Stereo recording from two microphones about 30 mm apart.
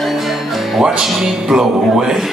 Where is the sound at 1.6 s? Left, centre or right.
Centre.